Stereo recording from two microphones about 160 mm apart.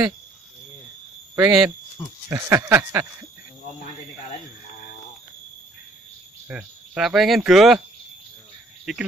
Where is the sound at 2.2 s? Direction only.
15° right (ahead or behind).